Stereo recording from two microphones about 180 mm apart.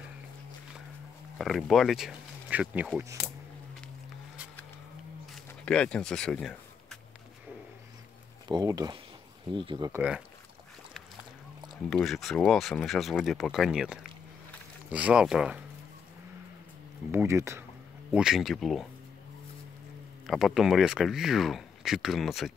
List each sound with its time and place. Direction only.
1.4 s speech: centre (ahead or behind)
5.3 s a sound: 5° left (ahead or behind)
8.5 s speech: 20° right (ahead or behind)
9.9 s speech: 5° right (ahead or behind)
11.9 s speech: centre (ahead or behind)
17.1 s speech: 15° right (ahead or behind)
18.1 s speech: 5° right (ahead or behind)
20.2 s speech: centre (ahead or behind)